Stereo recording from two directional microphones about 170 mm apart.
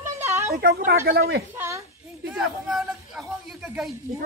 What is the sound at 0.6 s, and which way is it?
Speech, 65° right (ahead or behind).